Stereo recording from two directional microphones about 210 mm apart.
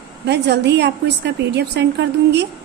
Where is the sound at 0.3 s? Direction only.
55° right (ahead or behind).